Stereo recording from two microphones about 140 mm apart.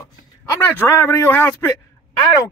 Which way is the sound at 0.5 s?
15° left (ahead or behind).